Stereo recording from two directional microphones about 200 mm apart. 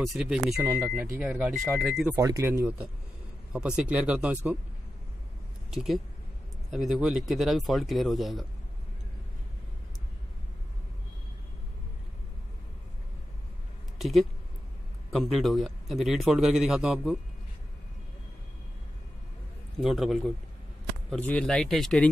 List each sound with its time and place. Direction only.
0.0 s a man's voice: centre (ahead or behind)
2.1 s a man's voice: 15° right (ahead or behind)
5.7 s a man's voice: centre (ahead or behind)
13.9 s a man's voice: centre (ahead or behind)
19.8 s a man's voice: centre (ahead or behind)